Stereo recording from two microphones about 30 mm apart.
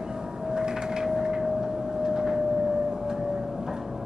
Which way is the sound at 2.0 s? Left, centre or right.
Centre.